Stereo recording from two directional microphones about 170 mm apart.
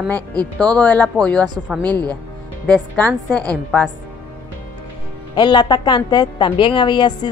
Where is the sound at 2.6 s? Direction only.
10° left (ahead or behind).